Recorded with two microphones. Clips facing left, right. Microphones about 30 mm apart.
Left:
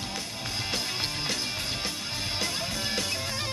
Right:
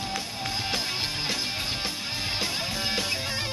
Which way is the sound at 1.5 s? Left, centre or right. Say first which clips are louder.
Right 2 dB; right.